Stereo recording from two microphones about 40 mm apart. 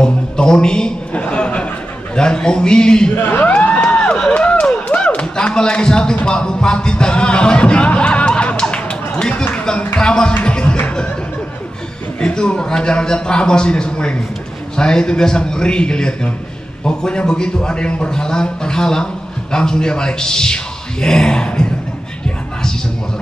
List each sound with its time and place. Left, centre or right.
0.0 s a man's voice: left
3.2 s speech: left
3.4 s a sound: left
4.0 s a sound: left
4.8 s clapping: left
5.4 s speech: left
6.2 s music: left
12.2 s a man's voice: left